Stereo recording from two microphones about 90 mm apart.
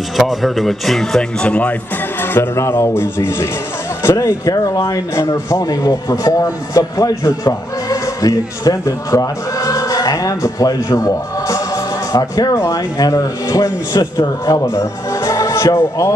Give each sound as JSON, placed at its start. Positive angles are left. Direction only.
{"t": 0.2, "sound": "speech", "side_deg": 0}
{"t": 1.5, "sound": "a man's voice", "side_deg": 15}